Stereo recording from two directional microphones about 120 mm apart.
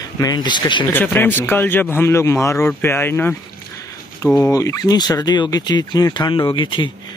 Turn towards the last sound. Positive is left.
turn(degrees=40)  # may be behind; listen again after turning